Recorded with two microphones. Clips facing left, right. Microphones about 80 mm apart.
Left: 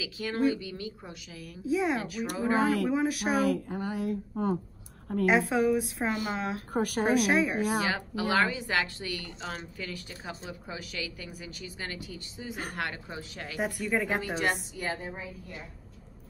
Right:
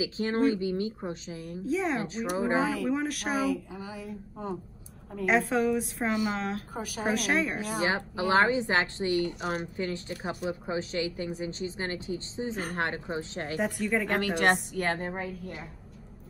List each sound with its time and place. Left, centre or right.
0.0 s a woman's voice: right
1.7 s a woman's voice: centre
2.0 s a woman's voice: right
2.5 s speech: left
2.9 s a woman's voice: centre
3.3 s speech: left
5.2 s a woman's voice: centre
6.7 s speech: left
7.2 s a woman's voice: centre
7.8 s a woman's voice: right
13.6 s a woman's voice: centre
14.4 s a woman's voice: right